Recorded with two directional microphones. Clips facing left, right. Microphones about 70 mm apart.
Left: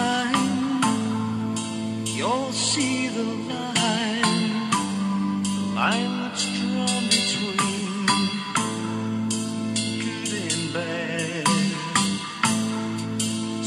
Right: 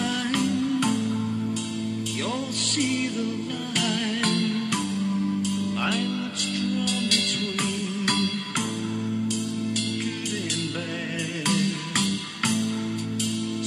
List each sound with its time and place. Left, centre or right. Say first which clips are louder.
0.0 s music: left 3 dB; left
2.2 s music: left 5 dB; left
5.8 s music: left 3 dB; left
11.4 s music: left 2 dB; left